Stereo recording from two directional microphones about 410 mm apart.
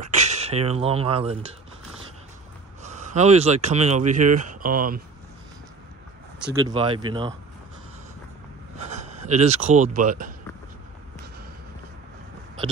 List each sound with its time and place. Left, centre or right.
0.1 s speech: centre
2.8 s speech: centre
6.4 s speech: centre
8.8 s speech: centre